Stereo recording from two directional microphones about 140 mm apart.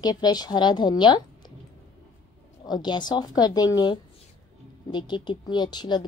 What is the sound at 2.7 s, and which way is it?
A woman's voice, 30° left (ahead or behind).